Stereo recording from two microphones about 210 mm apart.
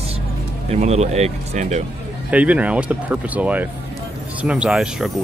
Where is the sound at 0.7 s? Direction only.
30° right (ahead or behind).